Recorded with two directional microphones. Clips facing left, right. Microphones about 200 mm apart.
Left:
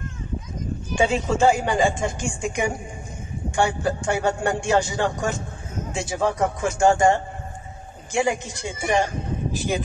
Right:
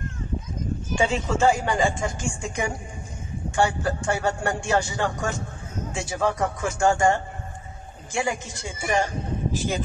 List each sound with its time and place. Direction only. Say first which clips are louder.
1.0 s speech: left 2 dB; 15° left (ahead or behind)